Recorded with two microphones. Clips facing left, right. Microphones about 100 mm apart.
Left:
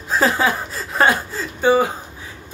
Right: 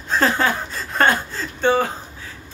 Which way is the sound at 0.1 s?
5° left (ahead or behind).